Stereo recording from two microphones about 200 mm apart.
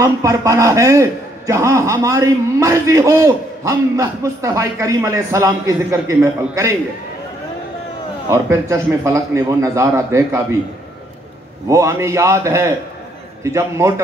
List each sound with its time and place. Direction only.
0.0 s a man's voice: 15° right (ahead or behind)
8.3 s a man's voice: 15° right (ahead or behind)
11.7 s a man's voice: 15° right (ahead or behind)